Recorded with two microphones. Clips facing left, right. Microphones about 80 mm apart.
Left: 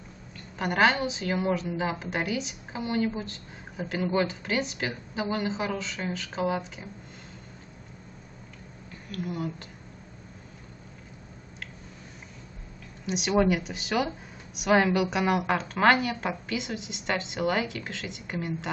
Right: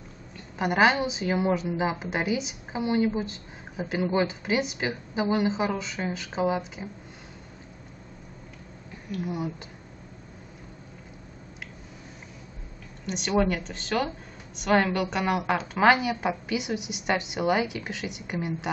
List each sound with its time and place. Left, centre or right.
0.6 s a woman's voice: centre
9.1 s a woman's voice: centre
13.0 s a woman's voice: centre